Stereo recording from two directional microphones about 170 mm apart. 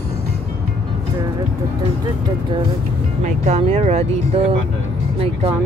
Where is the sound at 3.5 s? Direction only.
35° right (ahead or behind).